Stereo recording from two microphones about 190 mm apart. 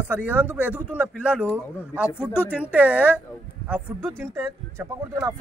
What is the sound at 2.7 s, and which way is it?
Speech, 5° right (ahead or behind).